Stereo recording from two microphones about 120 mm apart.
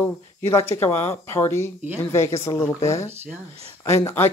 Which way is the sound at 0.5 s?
20° left (ahead or behind).